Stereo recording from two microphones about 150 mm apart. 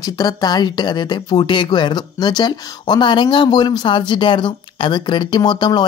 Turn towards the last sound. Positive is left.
turn(degrees=30)  # may be behind; listen again after turning